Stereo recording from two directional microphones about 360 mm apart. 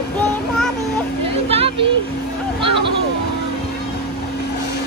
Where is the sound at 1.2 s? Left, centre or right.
Centre.